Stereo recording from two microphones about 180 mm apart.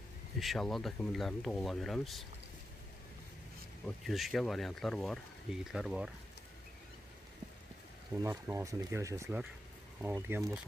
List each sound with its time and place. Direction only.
0.4 s speech: centre (ahead or behind)
3.8 s speech: centre (ahead or behind)
8.2 s speech: 15° right (ahead or behind)